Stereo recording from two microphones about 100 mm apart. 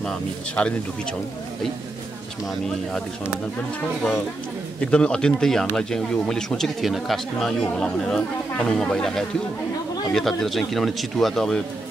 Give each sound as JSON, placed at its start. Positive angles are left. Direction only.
{"t": 0.0, "sound": "speech", "side_deg": 10}
{"t": 4.7, "sound": "speech", "side_deg": 10}